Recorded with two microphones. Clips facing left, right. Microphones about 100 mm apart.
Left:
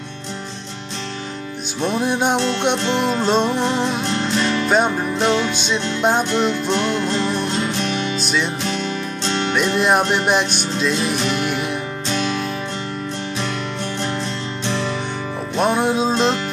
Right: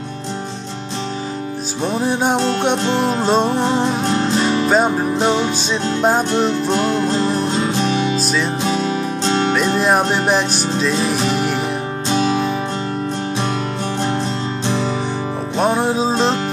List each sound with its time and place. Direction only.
1.8 s music: centre (ahead or behind)
2.3 s music: 40° right (ahead or behind)
3.2 s music: 5° right (ahead or behind)
3.9 s music: 35° right (ahead or behind)
4.6 s music: centre (ahead or behind)
5.2 s music: 20° right (ahead or behind)
6.3 s music: 35° right (ahead or behind)
8.3 s music: centre (ahead or behind)
8.7 s music: 35° right (ahead or behind)
15.5 s music: centre (ahead or behind)